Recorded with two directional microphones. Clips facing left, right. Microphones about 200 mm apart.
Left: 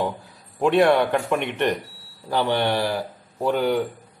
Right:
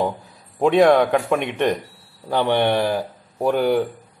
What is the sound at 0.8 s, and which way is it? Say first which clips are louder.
Speech: right 3 dB; 55° right (ahead or behind).